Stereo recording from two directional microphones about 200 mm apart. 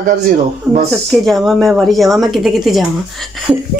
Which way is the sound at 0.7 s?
15° right (ahead or behind).